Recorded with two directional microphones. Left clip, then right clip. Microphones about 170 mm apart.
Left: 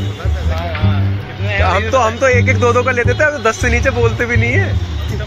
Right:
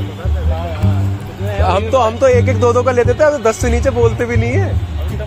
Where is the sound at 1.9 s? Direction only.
20° right (ahead or behind).